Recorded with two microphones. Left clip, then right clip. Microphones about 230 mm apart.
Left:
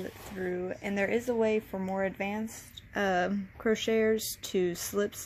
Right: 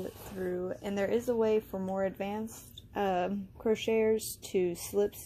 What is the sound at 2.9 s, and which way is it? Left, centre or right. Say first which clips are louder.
Speech: left 2 dB; left.